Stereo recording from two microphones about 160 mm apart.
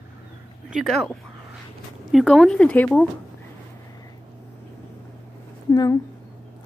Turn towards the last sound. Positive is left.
turn(degrees=20)  # may be behind; listen again after turning